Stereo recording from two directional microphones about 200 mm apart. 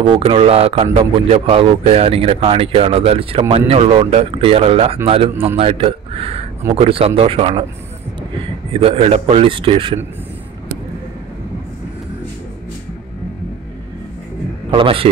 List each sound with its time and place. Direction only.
0.0 s speech: 25° right (ahead or behind)
8.7 s speech: 30° right (ahead or behind)
14.7 s speech: 25° right (ahead or behind)